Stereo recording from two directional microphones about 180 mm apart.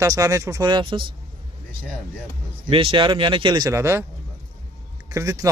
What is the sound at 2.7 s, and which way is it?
Speech, 30° right (ahead or behind).